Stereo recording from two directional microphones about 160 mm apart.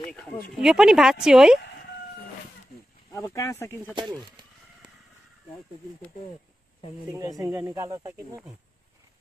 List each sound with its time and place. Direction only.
0.6 s speech: 5° right (ahead or behind)
3.1 s speech: 20° left (ahead or behind)
4.1 s speech: 30° right (ahead or behind)
7.1 s speech: 20° right (ahead or behind)